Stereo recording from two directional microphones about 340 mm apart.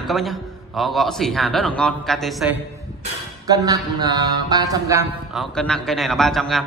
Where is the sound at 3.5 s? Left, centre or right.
Centre.